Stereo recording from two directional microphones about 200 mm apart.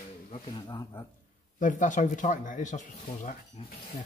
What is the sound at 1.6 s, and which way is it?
Speech, 40° left (ahead or behind).